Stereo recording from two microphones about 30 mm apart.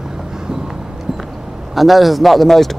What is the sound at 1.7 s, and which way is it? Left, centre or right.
A man's voice, centre.